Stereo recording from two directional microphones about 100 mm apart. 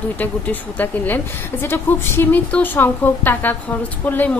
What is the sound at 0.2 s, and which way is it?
A woman's voice, 15° left (ahead or behind).